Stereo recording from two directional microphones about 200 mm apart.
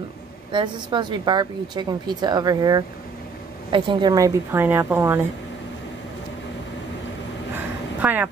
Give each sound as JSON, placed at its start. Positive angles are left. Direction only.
{"t": 0.5, "sound": "a woman's voice", "side_deg": -25}
{"t": 8.0, "sound": "vehicle", "side_deg": -10}